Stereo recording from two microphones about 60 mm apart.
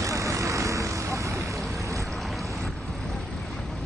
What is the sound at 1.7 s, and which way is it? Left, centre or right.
Boat, right.